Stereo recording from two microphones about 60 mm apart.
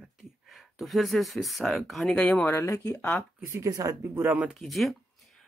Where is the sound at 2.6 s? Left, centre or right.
Left.